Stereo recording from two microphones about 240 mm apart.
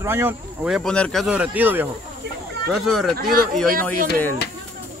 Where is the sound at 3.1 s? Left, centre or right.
Right.